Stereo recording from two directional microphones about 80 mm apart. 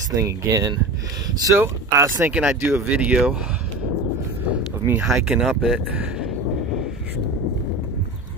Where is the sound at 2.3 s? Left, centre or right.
Centre.